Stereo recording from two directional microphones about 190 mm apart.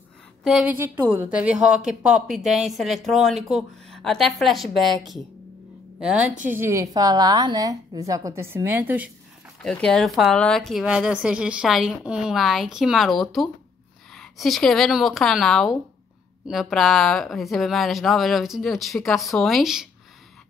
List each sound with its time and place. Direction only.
0.4 s a woman's voice: centre (ahead or behind)
5.9 s a woman's voice: 5° right (ahead or behind)
9.6 s a woman's voice: 5° left (ahead or behind)